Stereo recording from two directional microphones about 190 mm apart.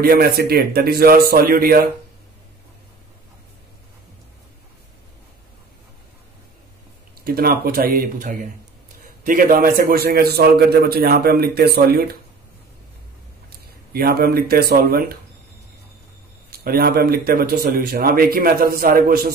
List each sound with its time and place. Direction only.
0.0 s speech: 55° right (ahead or behind)
7.2 s a man's voice: 50° right (ahead or behind)
13.5 s speech: 55° right (ahead or behind)
16.4 s speech: 55° right (ahead or behind)